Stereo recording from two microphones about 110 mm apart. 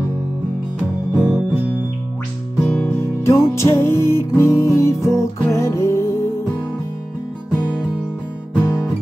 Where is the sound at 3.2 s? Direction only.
25° left (ahead or behind).